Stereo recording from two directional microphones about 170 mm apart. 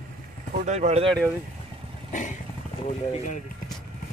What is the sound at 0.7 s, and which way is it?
Speech, 40° right (ahead or behind).